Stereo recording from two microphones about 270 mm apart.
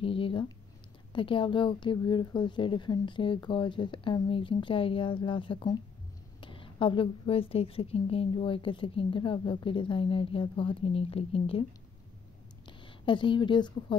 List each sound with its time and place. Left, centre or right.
0.0 s a woman's voice: centre
12.6 s speech: centre